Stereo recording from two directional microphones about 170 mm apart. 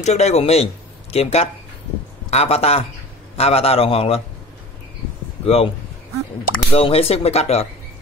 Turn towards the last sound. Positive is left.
turn(degrees=40)  # may be behind; listen again after turning